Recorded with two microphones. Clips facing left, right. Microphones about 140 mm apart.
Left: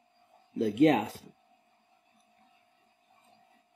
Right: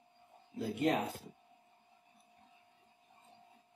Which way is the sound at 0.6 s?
90° left.